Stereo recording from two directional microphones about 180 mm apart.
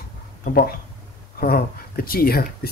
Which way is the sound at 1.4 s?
55° left (ahead or behind).